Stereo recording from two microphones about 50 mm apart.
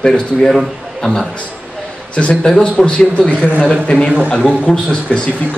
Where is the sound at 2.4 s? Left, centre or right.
Centre.